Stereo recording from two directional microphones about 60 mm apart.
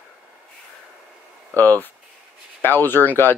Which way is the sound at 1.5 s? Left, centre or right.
Left.